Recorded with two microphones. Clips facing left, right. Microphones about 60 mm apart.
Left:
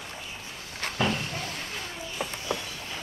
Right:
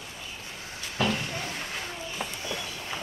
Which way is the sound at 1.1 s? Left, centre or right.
Centre.